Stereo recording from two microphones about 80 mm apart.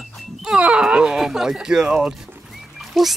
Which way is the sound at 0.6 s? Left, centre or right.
Centre.